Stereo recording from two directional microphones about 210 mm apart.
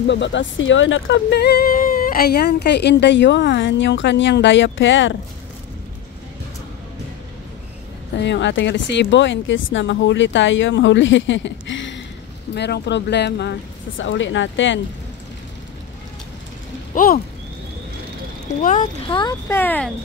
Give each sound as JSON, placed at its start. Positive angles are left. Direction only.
{"t": 0.0, "sound": "speech", "side_deg": 60}
{"t": 8.2, "sound": "speech", "side_deg": 60}
{"t": 16.9, "sound": "speech", "side_deg": 40}
{"t": 18.6, "sound": "speech", "side_deg": 35}
{"t": 19.0, "sound": "speech", "side_deg": 25}
{"t": 19.4, "sound": "speech", "side_deg": 10}